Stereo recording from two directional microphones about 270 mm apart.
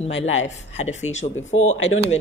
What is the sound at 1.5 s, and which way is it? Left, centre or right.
Speech, left.